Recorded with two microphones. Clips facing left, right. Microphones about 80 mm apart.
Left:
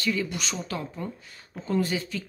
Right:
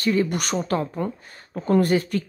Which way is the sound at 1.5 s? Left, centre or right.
Right.